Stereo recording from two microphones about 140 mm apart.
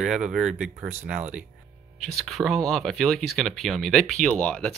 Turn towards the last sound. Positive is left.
turn(degrees=5)  # may be behind; listen again after turning